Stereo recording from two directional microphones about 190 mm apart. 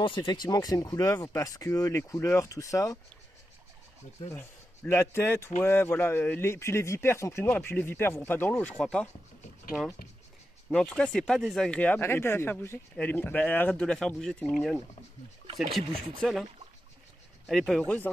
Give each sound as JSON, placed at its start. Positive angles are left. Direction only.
{"t": 0.0, "sound": "speech", "side_deg": 25}
{"t": 4.3, "sound": "a man's voice", "side_deg": 10}
{"t": 10.7, "sound": "speech", "side_deg": 5}
{"t": 17.5, "sound": "speech", "side_deg": 0}